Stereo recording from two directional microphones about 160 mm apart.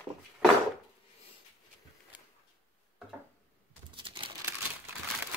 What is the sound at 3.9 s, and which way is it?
Crumpling, 30° right (ahead or behind).